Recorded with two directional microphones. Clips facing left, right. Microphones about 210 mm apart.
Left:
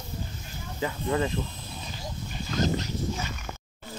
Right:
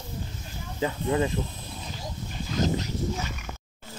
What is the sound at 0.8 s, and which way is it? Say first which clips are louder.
Speech: right 2 dB; 20° right (ahead or behind).